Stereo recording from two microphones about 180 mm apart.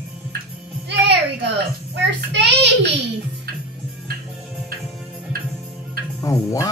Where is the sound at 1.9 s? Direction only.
75° right (ahead or behind).